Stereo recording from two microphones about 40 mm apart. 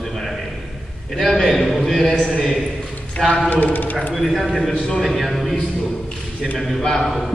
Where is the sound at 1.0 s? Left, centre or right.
Centre.